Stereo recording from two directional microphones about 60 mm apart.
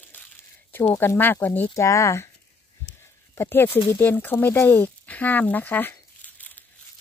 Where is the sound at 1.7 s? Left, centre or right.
Left.